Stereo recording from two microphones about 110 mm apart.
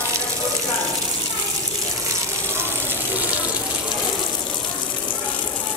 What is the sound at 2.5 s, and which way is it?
Water, 20° right (ahead or behind).